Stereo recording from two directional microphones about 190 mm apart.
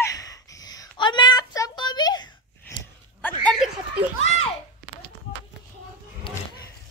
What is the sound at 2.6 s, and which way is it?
Dog, 10° left (ahead or behind).